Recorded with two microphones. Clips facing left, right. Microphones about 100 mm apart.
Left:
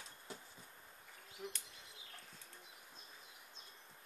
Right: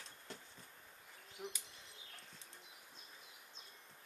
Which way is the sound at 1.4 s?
20° right (ahead or behind).